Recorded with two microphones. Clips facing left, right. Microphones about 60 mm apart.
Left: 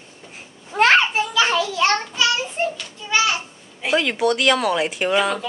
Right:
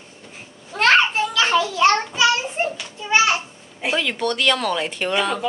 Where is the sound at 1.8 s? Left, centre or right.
Right.